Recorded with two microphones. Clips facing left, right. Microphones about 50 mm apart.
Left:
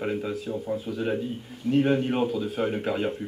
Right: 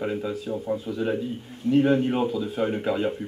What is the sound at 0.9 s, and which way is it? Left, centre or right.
Speech, centre.